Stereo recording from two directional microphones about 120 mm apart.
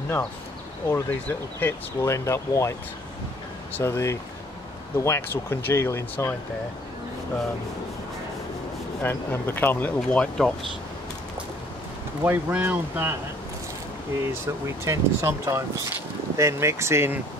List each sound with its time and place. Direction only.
0.8 s speech: 20° left (ahead or behind)
3.7 s speech: 25° left (ahead or behind)
9.0 s speech: 15° left (ahead or behind)
12.2 s speech: 15° right (ahead or behind)
14.4 s speech: 25° right (ahead or behind)